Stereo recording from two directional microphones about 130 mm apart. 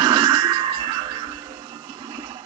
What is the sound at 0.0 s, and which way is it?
Music, 35° right (ahead or behind).